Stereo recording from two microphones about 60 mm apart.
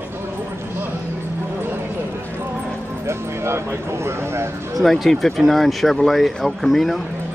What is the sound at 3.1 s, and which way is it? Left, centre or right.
Speech, right.